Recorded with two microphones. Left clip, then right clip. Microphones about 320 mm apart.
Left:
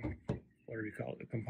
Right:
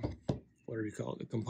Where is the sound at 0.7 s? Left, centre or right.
Centre.